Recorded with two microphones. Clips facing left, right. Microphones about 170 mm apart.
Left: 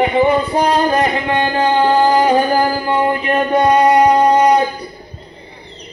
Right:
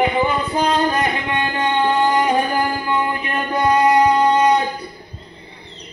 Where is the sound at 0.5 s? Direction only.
35° left (ahead or behind).